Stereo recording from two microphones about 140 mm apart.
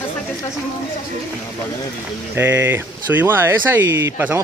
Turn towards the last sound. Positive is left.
turn(degrees=-20)  # may be behind; listen again after turning